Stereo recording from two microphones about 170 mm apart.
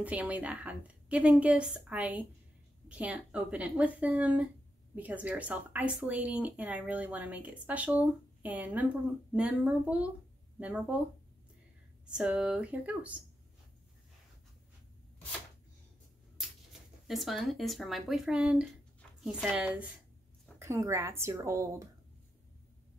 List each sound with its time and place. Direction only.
0.0 s speech: 10° right (ahead or behind)
12.1 s speech: 5° right (ahead or behind)
17.1 s speech: centre (ahead or behind)
20.5 s speech: 15° right (ahead or behind)